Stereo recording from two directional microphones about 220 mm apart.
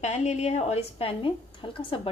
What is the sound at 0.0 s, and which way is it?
Speech, 30° left (ahead or behind).